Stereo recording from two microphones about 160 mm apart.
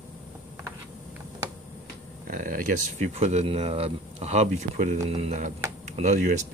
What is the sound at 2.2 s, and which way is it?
Speech, 55° right (ahead or behind).